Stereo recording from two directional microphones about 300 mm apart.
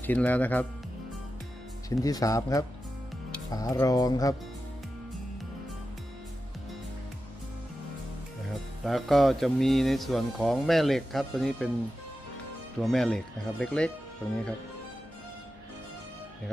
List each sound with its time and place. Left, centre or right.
0.0 s speech: centre
1.9 s speech: centre
8.8 s speech: centre
12.8 s speech: centre